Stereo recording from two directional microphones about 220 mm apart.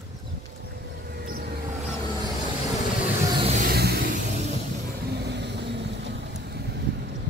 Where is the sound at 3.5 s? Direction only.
45° right (ahead or behind).